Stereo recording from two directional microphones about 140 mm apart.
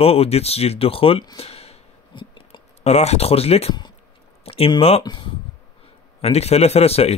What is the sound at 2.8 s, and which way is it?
Speech, 50° left (ahead or behind).